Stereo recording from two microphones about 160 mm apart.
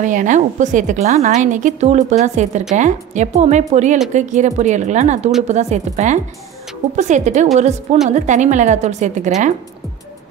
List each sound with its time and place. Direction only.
0.0 s a woman's voice: 50° right (ahead or behind)